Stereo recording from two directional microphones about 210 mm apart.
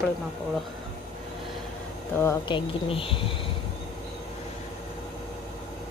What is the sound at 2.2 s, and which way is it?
A woman's voice, 25° left (ahead or behind).